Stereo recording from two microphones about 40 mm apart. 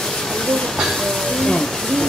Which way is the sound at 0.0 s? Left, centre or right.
Centre.